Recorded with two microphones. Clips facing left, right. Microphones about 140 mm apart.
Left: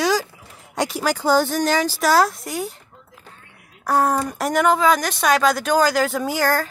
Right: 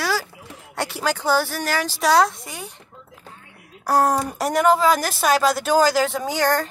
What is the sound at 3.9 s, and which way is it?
Speech, 35° right (ahead or behind).